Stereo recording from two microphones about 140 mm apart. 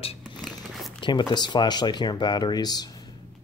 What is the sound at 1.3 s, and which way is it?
Speech, 30° left (ahead or behind).